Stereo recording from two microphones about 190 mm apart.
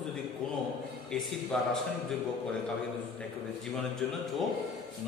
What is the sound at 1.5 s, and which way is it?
Speech, centre (ahead or behind).